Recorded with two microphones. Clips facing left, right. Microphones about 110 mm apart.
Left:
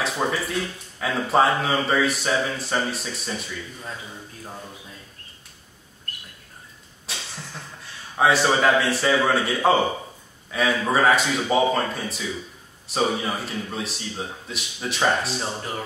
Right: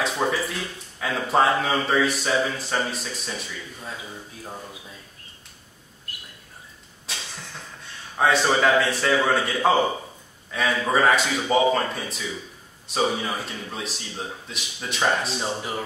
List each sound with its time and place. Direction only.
0.0 s speech: centre (ahead or behind)
7.1 s a sound: centre (ahead or behind)
7.8 s a man's voice: centre (ahead or behind)